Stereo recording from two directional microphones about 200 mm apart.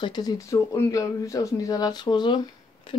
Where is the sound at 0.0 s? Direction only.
20° left (ahead or behind).